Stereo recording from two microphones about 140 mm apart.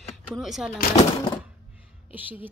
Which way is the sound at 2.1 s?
10° right (ahead or behind).